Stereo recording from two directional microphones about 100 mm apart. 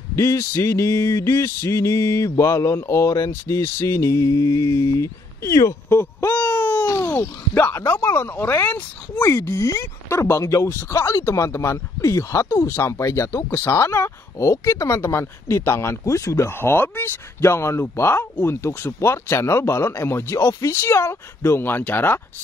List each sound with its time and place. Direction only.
0.1 s speech: 30° left (ahead or behind)
9.3 s speech: 30° left (ahead or behind)